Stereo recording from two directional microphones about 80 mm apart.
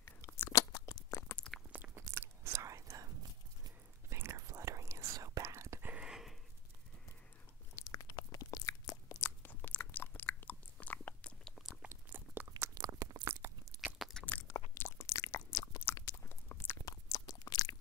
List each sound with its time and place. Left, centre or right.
0.0 s crunch: left
0.5 s chewing: left
1.7 s biting: right
2.0 s chewing: right
4.1 s whispering: right
5.9 s a sound: centre
7.9 s crunch: left
9.2 s biting: left
11.8 s chewing: right
12.7 s biting: right
13.2 s biting: right
14.2 s a sound: centre
14.8 s a sound: left
16.8 s a sound: left